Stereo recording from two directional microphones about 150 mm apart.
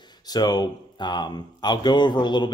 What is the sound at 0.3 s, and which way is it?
A man's voice, 25° left (ahead or behind).